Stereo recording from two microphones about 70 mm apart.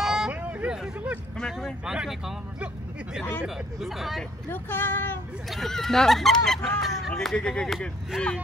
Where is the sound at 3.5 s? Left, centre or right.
Centre.